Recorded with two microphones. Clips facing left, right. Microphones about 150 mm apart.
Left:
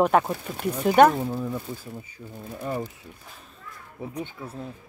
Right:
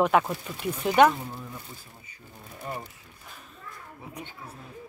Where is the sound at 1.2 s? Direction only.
90° left.